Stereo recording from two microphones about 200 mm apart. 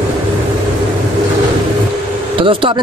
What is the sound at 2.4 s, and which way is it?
Speech, 25° right (ahead or behind).